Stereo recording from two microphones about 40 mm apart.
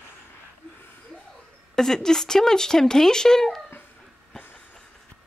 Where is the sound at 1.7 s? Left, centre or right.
Centre.